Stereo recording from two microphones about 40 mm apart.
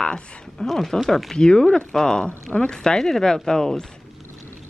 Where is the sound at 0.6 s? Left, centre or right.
Centre.